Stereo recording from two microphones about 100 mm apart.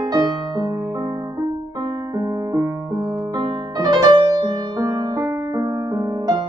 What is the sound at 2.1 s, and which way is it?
Music, 40° right (ahead or behind).